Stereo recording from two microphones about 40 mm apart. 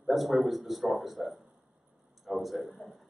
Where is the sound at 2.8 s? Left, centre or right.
Left.